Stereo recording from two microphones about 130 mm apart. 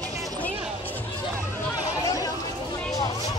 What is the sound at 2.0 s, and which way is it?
Chatter, 25° left (ahead or behind).